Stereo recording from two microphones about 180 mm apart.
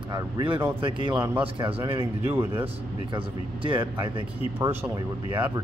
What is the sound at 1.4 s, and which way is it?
Speech, 30° right (ahead or behind).